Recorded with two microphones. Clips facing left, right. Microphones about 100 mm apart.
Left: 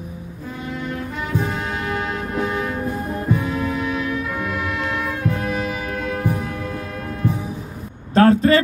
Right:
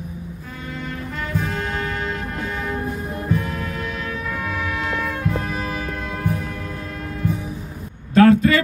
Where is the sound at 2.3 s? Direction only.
5° left (ahead or behind).